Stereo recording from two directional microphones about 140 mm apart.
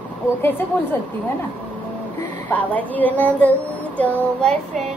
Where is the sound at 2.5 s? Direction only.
10° left (ahead or behind).